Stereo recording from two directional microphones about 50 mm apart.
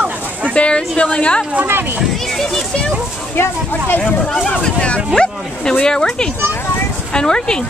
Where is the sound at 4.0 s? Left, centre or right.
Centre.